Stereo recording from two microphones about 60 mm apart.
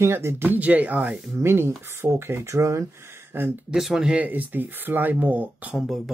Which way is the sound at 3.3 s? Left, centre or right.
Right.